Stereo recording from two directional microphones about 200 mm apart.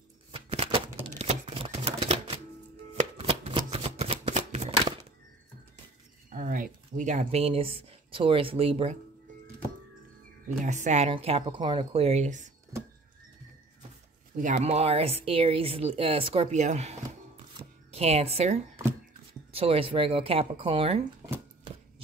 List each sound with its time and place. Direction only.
0.3 s a sound: 30° right (ahead or behind)
1.1 s typewriter: 30° right (ahead or behind)
3.0 s shuffling cards: 30° right (ahead or behind)
6.3 s speech: 45° right (ahead or behind)
10.6 s a woman's voice: 35° right (ahead or behind)
14.3 s speech: 40° right (ahead or behind)
17.6 s zipper: 30° right (ahead or behind)
19.5 s speech: 30° right (ahead or behind)